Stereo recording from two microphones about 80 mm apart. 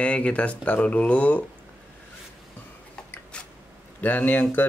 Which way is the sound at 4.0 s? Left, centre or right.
Left.